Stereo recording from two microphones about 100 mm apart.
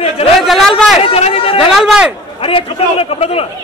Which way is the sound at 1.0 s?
75° left (ahead or behind).